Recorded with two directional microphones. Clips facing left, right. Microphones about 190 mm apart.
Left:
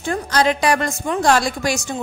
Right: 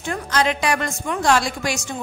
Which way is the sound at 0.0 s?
35° left (ahead or behind).